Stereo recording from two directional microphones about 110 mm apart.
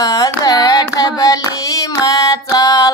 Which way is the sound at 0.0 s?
35° left (ahead or behind).